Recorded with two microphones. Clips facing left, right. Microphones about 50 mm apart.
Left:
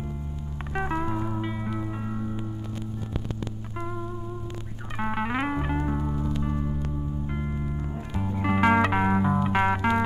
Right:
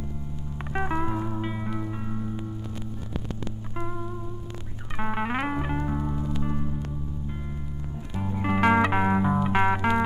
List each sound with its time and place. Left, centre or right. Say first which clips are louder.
0.7 s music: even; centre
4.9 s music: even; centre
7.2 s music: left 5 dB; left
8.2 s music: even; centre